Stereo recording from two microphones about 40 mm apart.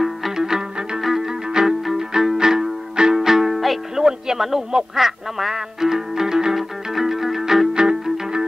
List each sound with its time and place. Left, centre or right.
0.0 s music: centre
7.7 s music: centre